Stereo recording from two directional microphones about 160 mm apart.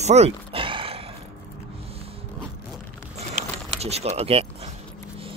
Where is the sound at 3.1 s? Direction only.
40° right (ahead or behind).